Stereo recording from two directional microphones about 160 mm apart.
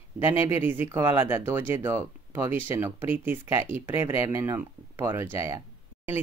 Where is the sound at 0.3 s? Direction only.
15° right (ahead or behind).